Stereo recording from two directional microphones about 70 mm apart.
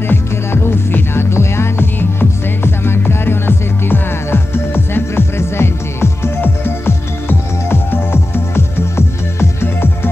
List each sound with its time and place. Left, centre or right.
0.1 s music: left